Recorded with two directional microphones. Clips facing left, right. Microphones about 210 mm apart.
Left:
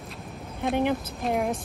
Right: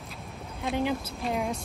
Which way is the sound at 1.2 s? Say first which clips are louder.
Left 4 dB; centre (ahead or behind).